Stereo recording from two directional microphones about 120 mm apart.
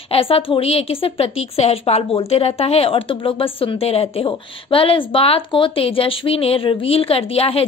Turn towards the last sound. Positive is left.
turn(degrees=55)  # may be behind; listen again after turning